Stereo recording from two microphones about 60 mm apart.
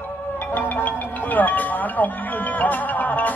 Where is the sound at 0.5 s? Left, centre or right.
Left.